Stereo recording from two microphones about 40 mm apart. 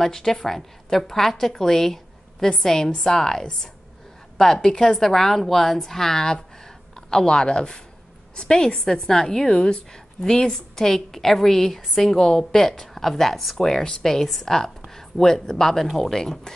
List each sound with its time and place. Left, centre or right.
0.0 s a woman's voice: centre
13.6 s a woman's voice: centre